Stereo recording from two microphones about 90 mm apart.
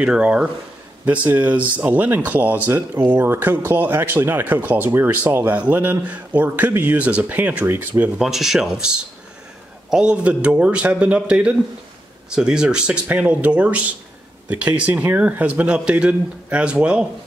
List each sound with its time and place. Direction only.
0.0 s speech: 10° right (ahead or behind)
8.2 s speech: 5° right (ahead or behind)